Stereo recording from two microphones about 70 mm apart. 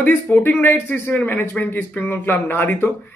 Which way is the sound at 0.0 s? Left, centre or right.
Left.